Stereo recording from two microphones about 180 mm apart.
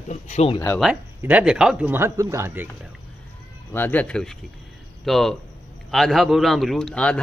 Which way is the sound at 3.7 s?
10° left (ahead or behind).